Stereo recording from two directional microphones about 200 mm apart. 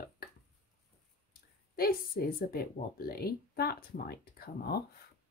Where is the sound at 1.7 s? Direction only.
50° left (ahead or behind).